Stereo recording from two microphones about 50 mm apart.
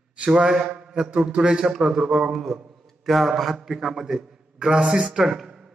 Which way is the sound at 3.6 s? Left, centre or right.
Centre.